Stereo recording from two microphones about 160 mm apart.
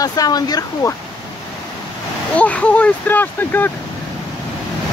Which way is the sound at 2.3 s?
10° left (ahead or behind).